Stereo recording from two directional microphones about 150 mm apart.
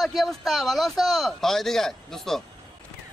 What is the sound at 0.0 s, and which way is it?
A man's voice, centre (ahead or behind).